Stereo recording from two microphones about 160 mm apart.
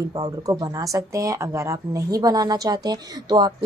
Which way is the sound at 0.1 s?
25° right (ahead or behind).